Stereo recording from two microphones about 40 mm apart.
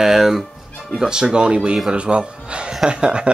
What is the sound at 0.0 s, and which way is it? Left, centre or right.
Speech, centre.